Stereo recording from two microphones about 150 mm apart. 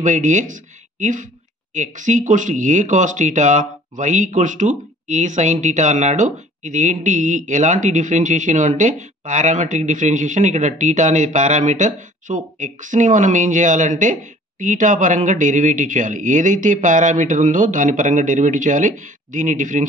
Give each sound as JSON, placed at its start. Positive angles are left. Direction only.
{"t": 0.0, "sound": "speech", "side_deg": -55}